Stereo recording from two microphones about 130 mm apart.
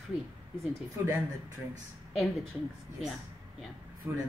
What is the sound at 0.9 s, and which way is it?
Speech, 20° right (ahead or behind).